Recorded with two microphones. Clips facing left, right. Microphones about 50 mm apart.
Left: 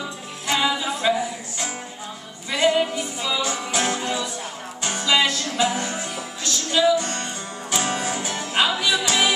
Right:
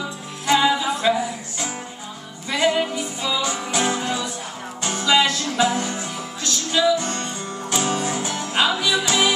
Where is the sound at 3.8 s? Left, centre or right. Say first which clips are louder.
Right 3 dB; centre.